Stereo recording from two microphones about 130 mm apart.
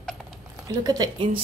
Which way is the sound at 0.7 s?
30° right (ahead or behind).